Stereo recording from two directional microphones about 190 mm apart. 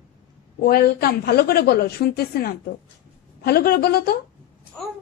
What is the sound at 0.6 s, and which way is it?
A woman's voice, 50° left (ahead or behind).